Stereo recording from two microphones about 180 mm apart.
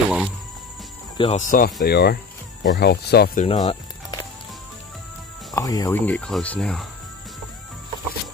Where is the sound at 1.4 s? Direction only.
45° left (ahead or behind).